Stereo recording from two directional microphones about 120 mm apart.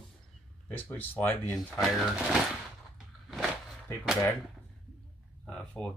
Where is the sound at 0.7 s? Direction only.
15° left (ahead or behind).